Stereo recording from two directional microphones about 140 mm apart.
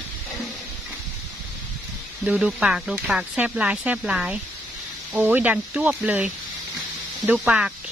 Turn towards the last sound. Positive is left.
turn(degrees=-10)  # may be behind; listen again after turning